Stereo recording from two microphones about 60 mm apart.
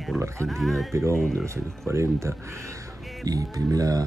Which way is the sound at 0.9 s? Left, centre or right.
Right.